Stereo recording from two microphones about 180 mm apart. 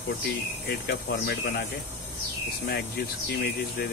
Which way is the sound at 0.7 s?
60° left (ahead or behind).